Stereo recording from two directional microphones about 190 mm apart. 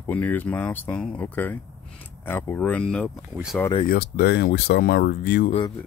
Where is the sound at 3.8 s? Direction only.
55° left (ahead or behind).